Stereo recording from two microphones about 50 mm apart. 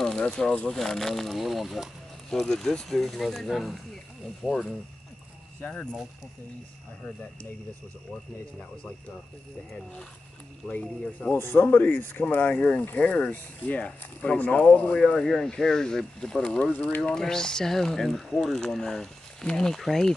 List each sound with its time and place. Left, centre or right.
0.0 s speech: centre
2.3 s speech: centre
5.6 s speech: left
8.1 s speech: left
10.7 s speech: left
11.3 s speech: left
15.0 s speech: centre
16.7 s speech: left
17.0 s speech: centre